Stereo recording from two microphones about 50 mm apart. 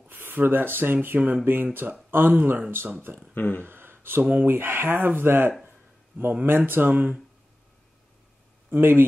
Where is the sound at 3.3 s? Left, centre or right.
Left.